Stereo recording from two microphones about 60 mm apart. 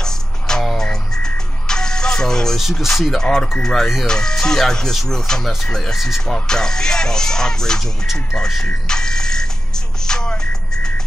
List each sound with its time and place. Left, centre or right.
0.0 s music: centre
2.8 s speech: centre
5.9 s speech: centre
6.2 s speech: centre
8.6 s music: centre